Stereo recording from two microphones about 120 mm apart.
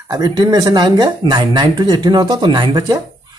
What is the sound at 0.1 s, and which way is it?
Speech, 35° right (ahead or behind).